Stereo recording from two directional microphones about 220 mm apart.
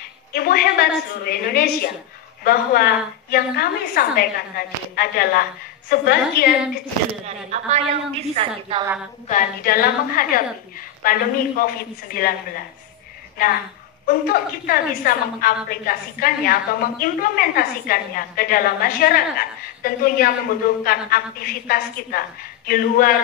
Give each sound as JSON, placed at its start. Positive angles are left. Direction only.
{"t": 0.3, "sound": "a woman's voice", "side_deg": 45}
{"t": 7.2, "sound": "a woman's voice", "side_deg": -30}
{"t": 9.3, "sound": "a woman's voice", "side_deg": 40}